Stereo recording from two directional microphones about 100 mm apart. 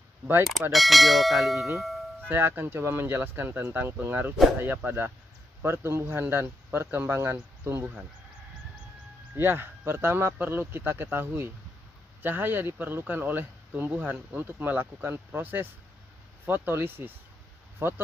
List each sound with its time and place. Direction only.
0.5 s speech: centre (ahead or behind)
2.2 s speech: 20° right (ahead or behind)
9.3 s speech: 20° right (ahead or behind)